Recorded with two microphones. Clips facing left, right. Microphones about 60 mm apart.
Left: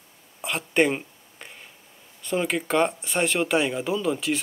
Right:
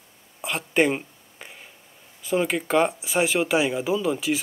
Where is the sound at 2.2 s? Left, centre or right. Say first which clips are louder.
Right 2 dB; centre.